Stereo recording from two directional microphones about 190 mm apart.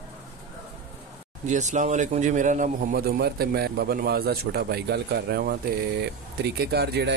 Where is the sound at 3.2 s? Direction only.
55° right (ahead or behind).